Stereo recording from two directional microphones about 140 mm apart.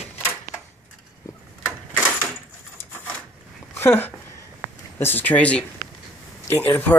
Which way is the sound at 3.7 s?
15° left (ahead or behind).